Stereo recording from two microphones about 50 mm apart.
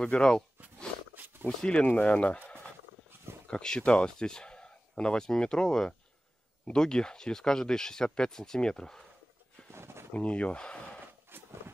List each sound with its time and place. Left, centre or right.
0.0 s speech: centre
1.1 s a sound: right
1.6 s speech: left
3.4 s speech: centre
9.7 s a sound: right
10.1 s speech: left